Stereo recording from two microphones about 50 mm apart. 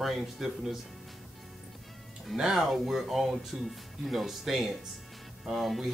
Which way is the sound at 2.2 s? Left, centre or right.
Centre.